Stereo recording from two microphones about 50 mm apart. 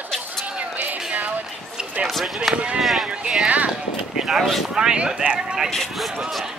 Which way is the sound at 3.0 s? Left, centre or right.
Centre.